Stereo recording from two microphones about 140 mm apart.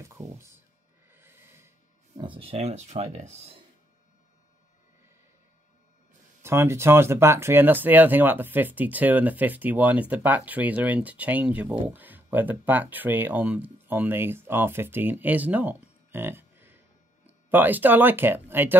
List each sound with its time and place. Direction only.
0.0 s speech: 20° right (ahead or behind)
1.1 s a sound: 15° right (ahead or behind)
2.1 s speech: 35° right (ahead or behind); by 3.6 s 55° right (ahead or behind)
6.4 s speech: 20° right (ahead or behind)